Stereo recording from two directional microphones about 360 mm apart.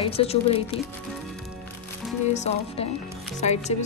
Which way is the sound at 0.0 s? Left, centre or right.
Centre.